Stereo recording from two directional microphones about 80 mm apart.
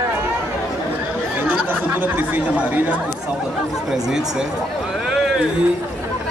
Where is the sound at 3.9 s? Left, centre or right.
Centre.